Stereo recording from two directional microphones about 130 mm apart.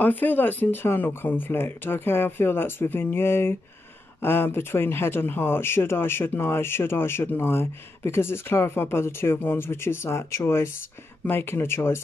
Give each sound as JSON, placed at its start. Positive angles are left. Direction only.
{"t": 0.0, "sound": "speech", "side_deg": 15}